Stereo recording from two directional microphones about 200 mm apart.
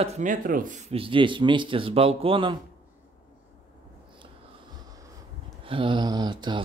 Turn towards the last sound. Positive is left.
turn(degrees=-20)  # may be behind; listen again after turning